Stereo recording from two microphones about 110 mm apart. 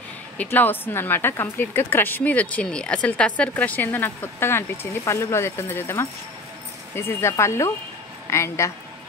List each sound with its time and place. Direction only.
0.4 s speech: 15° left (ahead or behind)